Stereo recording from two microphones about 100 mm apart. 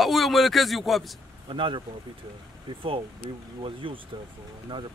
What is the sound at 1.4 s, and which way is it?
Speech, 60° right (ahead or behind).